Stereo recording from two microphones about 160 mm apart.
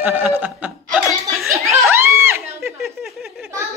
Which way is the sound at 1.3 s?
Centre (ahead or behind).